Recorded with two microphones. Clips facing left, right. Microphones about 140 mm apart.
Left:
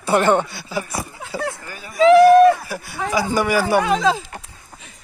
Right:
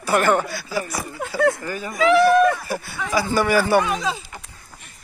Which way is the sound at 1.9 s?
35° left (ahead or behind).